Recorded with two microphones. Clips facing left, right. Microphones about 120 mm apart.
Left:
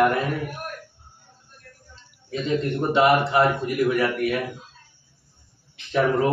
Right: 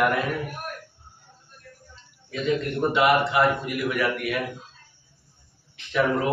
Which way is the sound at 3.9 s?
35° left (ahead or behind).